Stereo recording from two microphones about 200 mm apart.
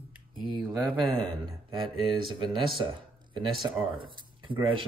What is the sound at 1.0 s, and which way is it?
Speech, centre (ahead or behind).